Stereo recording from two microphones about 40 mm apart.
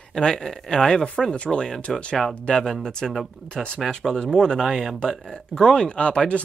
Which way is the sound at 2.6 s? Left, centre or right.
Centre.